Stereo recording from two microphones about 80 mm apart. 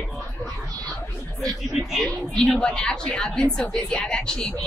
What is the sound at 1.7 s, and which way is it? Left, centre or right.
Speech, centre.